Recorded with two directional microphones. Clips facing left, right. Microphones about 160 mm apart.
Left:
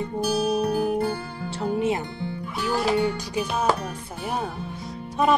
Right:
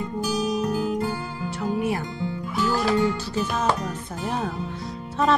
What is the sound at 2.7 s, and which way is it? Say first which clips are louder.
Speech: left 1 dB; 15° left (ahead or behind).